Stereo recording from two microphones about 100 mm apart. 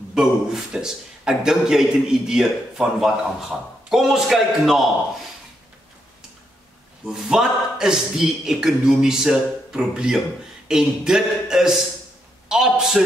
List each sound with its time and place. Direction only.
0.1 s a man's voice: 5° right (ahead or behind)
7.2 s a man's voice: 5° right (ahead or behind)